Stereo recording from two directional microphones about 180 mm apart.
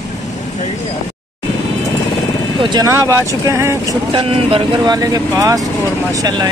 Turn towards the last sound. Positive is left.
turn(degrees=-20)  # may be behind; listen again after turning